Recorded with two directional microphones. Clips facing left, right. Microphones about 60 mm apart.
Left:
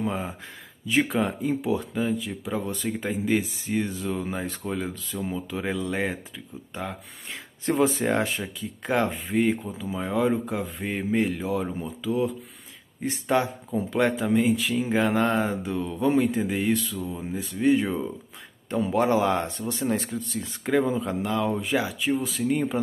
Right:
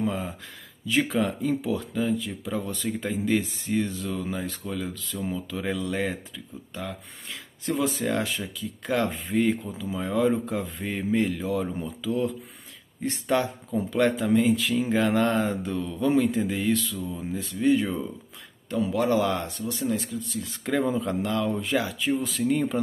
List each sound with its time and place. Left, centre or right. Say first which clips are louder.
0.0 s speech: even; left
0.8 s speech: left 1 dB; centre
1.7 s speech: left 1 dB; centre
6.7 s speech: left 2 dB; left
9.1 s speech: even; centre
13.0 s speech: left 1 dB; centre
18.7 s speech: left 1 dB; left
20.7 s speech: left 2 dB; centre